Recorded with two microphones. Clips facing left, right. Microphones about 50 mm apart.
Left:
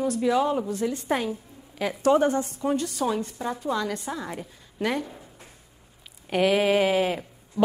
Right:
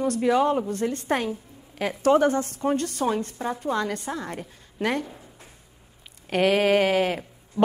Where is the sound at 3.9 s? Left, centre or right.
Centre.